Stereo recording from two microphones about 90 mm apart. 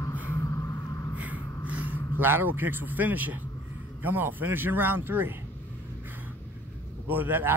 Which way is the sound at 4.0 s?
20° right (ahead or behind).